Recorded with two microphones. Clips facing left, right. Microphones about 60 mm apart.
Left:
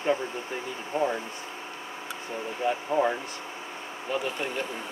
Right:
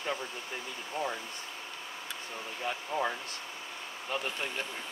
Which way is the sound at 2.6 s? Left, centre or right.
Left.